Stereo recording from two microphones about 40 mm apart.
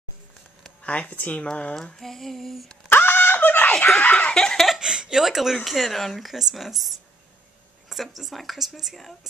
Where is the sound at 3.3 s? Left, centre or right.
Left.